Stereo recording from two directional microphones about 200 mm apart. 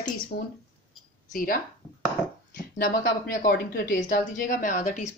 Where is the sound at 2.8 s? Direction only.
45° left (ahead or behind).